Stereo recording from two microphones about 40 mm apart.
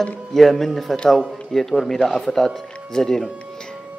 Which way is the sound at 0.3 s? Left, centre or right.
Centre.